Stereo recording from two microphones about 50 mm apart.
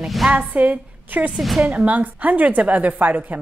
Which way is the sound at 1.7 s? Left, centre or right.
Right.